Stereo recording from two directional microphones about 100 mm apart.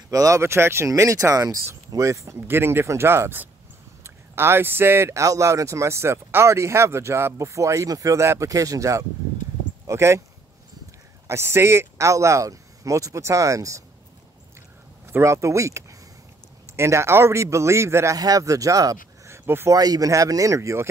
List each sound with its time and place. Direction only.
0.1 s speech: 35° right (ahead or behind)
11.2 s speech: 25° right (ahead or behind)
15.1 s speech: 30° right (ahead or behind)
19.7 s speech: 40° right (ahead or behind)